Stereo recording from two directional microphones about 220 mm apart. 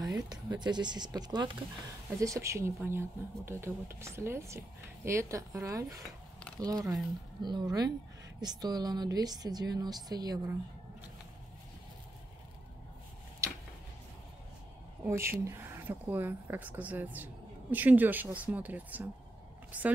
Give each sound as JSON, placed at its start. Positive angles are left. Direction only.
{"t": 0.0, "sound": "speech", "side_deg": -20}
{"t": 15.0, "sound": "speech", "side_deg": -10}